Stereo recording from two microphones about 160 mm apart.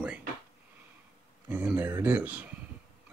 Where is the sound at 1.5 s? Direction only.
10° right (ahead or behind).